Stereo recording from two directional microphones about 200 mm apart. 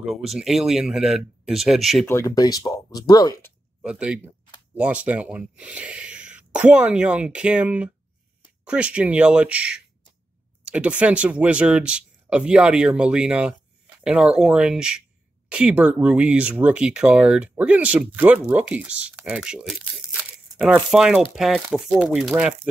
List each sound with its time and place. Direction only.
0.0 s speech: centre (ahead or behind)
2.0 s speech: 15° left (ahead or behind)
3.8 s speech: 5° right (ahead or behind)